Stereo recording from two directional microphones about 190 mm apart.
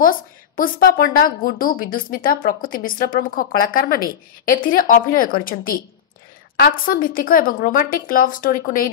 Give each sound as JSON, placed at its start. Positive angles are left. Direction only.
{"t": 0.6, "sound": "a woman's voice", "side_deg": 50}